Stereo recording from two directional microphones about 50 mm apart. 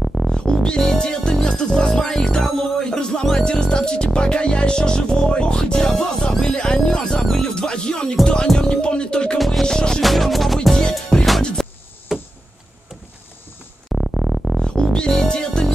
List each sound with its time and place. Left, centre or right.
0.0 s music: centre
0.3 s music: centre
3.4 s speech: centre
8.5 s music: centre
9.4 s music: centre
10.0 s music: centre
10.8 s music: centre
12.1 s a sound: centre
13.8 s synthesizer: centre
14.6 s music: centre